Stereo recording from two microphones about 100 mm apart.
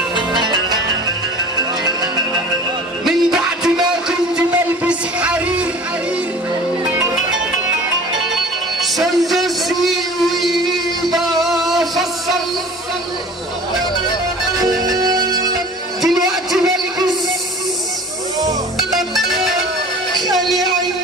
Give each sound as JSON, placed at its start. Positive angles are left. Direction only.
{"t": 3.1, "sound": "music", "side_deg": -5}
{"t": 8.8, "sound": "a sound", "side_deg": 0}
{"t": 11.1, "sound": "music", "side_deg": 0}
{"t": 14.8, "sound": "music", "side_deg": -40}
{"t": 16.3, "sound": "a sound", "side_deg": -5}
{"t": 18.8, "sound": "music", "side_deg": 0}